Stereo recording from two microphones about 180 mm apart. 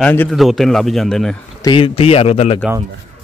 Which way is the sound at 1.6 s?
25° left (ahead or behind).